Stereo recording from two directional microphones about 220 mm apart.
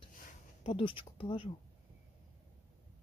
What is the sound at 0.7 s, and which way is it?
Speech, 25° left (ahead or behind).